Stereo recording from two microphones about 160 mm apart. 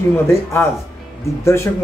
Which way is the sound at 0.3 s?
15° left (ahead or behind).